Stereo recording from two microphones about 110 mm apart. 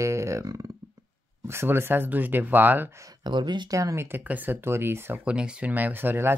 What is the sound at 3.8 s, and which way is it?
Speech, 25° right (ahead or behind).